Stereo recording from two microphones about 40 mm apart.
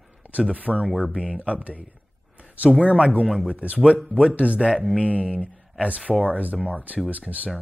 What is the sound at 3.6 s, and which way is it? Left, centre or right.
Speech, left.